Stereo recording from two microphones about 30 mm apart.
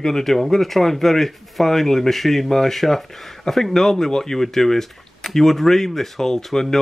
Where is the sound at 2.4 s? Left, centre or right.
Centre.